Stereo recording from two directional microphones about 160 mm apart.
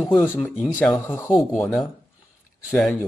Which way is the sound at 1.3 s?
Centre (ahead or behind).